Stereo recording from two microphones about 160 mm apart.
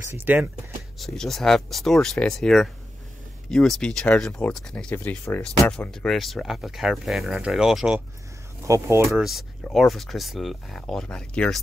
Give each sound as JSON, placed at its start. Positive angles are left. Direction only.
{"t": 0.1, "sound": "speech", "side_deg": -15}
{"t": 0.9, "sound": "speech", "side_deg": 0}
{"t": 8.6, "sound": "speech", "side_deg": -20}
{"t": 9.1, "sound": "speech", "side_deg": 0}